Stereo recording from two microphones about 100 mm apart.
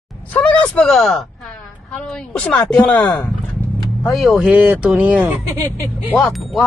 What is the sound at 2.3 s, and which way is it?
Speech, 10° left (ahead or behind).